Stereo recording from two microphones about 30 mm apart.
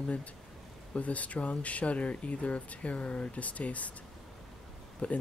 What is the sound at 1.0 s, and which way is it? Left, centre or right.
Speech, left.